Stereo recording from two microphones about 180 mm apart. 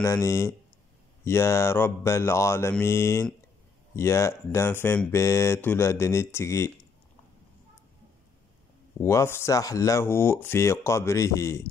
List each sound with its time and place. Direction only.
0.0 s speech: 15° left (ahead or behind)
9.0 s speech: 15° left (ahead or behind)